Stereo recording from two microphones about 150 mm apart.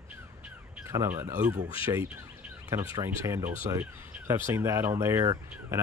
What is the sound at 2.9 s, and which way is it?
Speech, 20° right (ahead or behind).